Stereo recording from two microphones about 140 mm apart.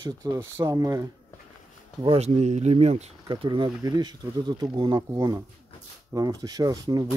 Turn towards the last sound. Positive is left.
turn(degrees=-25)  # may be behind; listen again after turning